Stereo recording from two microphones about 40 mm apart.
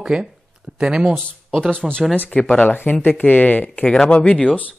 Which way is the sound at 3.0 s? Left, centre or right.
Left.